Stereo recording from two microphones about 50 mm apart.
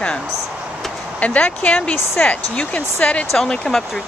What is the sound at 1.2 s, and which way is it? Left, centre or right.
Speech, left.